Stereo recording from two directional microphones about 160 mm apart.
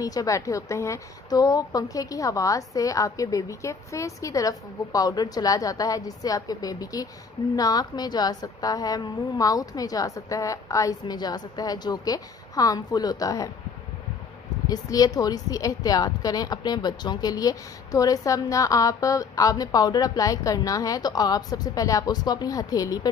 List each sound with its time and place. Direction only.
0.0 s a woman's voice: 20° left (ahead or behind)
14.7 s a woman's voice: 25° left (ahead or behind)